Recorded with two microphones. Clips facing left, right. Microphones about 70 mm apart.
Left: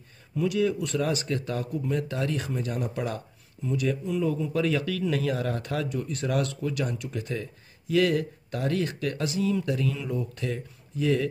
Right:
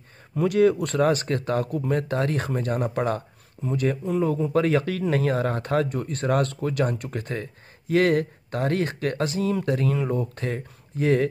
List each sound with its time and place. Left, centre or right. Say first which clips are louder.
0.4 s speech: right 6 dB; right